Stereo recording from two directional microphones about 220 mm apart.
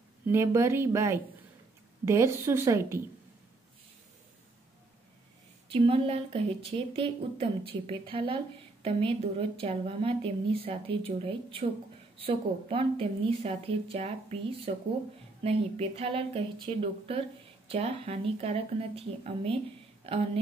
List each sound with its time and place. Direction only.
0.3 s speech: 10° right (ahead or behind)
5.7 s a woman's voice: 25° right (ahead or behind)